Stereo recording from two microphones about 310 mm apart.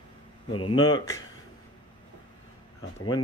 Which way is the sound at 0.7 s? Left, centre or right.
Centre.